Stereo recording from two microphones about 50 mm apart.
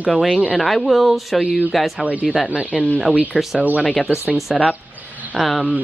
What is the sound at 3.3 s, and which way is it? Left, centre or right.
Speech, centre.